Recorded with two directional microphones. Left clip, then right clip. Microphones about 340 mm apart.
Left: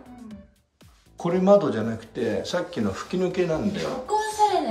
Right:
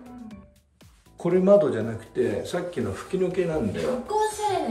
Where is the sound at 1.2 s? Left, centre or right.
Centre.